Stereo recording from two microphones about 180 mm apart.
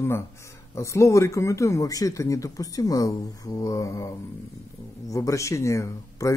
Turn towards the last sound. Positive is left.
turn(degrees=15)  # may be behind; listen again after turning